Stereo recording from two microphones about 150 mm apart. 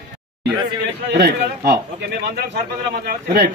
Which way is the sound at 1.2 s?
90° right.